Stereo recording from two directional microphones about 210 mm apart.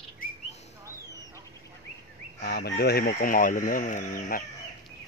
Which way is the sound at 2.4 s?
45° left (ahead or behind).